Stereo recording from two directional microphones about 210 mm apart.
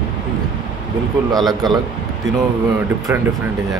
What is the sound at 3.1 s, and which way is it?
Speech, 10° right (ahead or behind).